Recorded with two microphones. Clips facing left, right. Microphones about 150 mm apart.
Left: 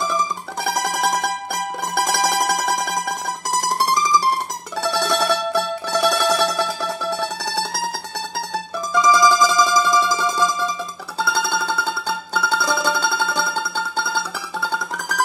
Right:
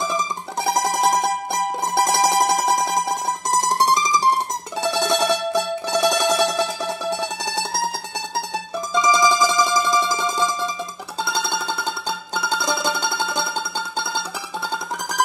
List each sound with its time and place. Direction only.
0.7 s music: 20° right (ahead or behind)
8.9 s music: 20° right (ahead or behind)